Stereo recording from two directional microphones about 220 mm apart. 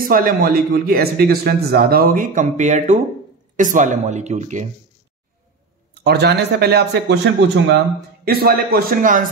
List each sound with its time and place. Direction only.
0.1 s a man's voice: 40° right (ahead or behind)
6.0 s a man's voice: 50° right (ahead or behind)